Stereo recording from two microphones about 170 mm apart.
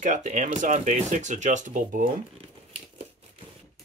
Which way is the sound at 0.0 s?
45° right (ahead or behind).